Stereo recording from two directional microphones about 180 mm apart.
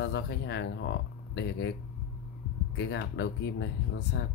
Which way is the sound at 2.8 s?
75° left (ahead or behind).